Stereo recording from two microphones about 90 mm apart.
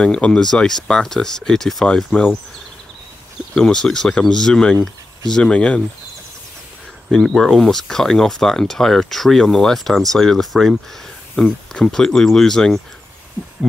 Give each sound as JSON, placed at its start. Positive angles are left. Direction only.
{"t": 0.0, "sound": "speech", "side_deg": 10}
{"t": 3.5, "sound": "speech", "side_deg": 5}
{"t": 7.1, "sound": "speech", "side_deg": 0}